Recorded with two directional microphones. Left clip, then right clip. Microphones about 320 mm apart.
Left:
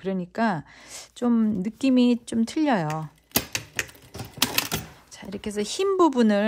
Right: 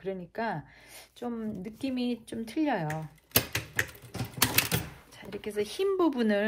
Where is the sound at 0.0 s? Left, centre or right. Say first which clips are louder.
Left 7 dB; centre.